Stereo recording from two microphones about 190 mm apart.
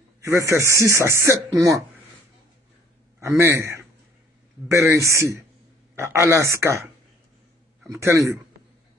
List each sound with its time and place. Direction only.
0.2 s speech: 15° right (ahead or behind)
3.2 s speech: 15° right (ahead or behind)
7.9 s speech: 15° right (ahead or behind)